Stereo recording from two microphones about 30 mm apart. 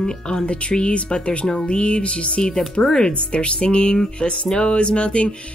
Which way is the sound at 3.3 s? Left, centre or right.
Left.